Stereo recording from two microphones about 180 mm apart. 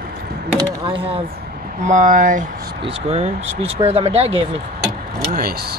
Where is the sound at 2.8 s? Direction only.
35° right (ahead or behind).